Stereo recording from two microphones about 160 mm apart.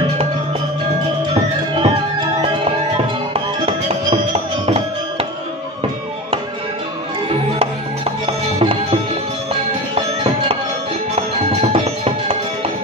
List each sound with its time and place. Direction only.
3.3 s music: 35° right (ahead or behind)
7.5 s music: 35° right (ahead or behind)
9.9 s music: 35° right (ahead or behind)
11.7 s music: 40° right (ahead or behind)